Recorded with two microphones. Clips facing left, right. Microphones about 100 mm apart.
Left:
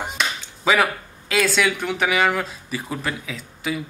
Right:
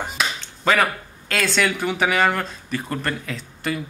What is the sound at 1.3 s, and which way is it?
A man's voice, 5° left (ahead or behind).